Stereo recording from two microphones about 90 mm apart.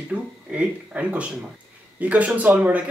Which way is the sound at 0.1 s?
15° right (ahead or behind).